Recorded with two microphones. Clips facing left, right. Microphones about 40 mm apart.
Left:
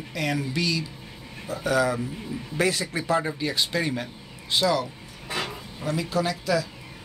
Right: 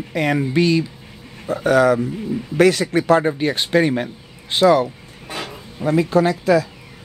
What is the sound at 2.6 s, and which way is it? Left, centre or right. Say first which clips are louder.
Speech: right 10 dB; right.